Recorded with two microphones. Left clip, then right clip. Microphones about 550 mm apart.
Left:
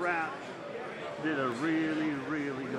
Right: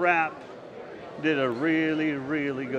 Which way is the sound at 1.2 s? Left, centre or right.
Right.